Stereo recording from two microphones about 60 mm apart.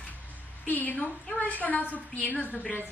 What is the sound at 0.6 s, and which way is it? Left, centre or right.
A woman's voice, left.